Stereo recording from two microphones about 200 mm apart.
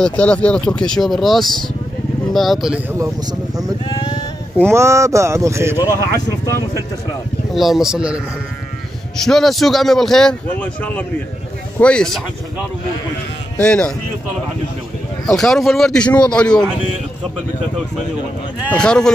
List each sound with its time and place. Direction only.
0.0 s a man's voice: 5° left (ahead or behind)
3.0 s speech: 15° right (ahead or behind)
3.9 s sheep: 20° left (ahead or behind)
4.6 s speech: 15° right (ahead or behind)
5.9 s speech: 15° left (ahead or behind)
7.5 s a man's voice: centre (ahead or behind)
13.6 s a man's voice: 5° left (ahead or behind)
15.2 s a man's voice: centre (ahead or behind)
18.7 s a man's voice: 5° left (ahead or behind)